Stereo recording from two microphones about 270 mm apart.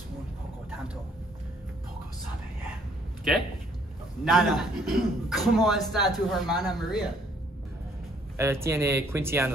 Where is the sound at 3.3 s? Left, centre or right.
Centre.